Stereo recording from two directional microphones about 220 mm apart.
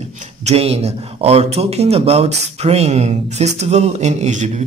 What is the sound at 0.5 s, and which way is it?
Speech, 30° right (ahead or behind).